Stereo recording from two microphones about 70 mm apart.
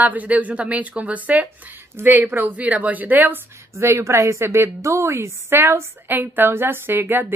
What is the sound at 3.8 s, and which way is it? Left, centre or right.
A woman's voice, right.